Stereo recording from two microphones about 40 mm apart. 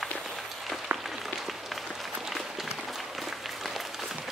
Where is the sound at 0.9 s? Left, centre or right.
Right.